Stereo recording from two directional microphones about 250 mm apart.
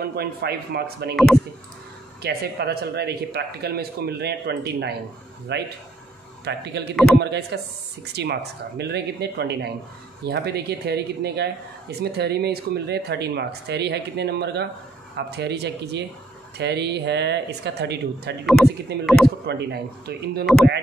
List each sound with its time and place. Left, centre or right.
0.0 s speech: right
2.2 s speech: right
18.4 s a man's voice: centre
19.4 s speech: right